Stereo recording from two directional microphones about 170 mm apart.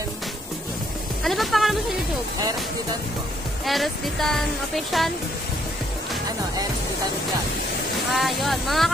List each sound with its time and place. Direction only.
1.2 s music: centre (ahead or behind)
3.6 s speech: centre (ahead or behind)
8.1 s speech: centre (ahead or behind)